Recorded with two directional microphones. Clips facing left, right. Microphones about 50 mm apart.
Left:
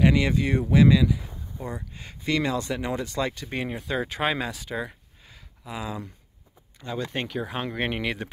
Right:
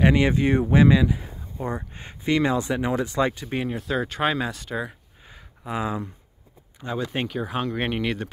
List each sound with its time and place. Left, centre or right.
0.0 s speech: right
3.3 s speech: centre
5.6 s speech: right
7.0 s speech: centre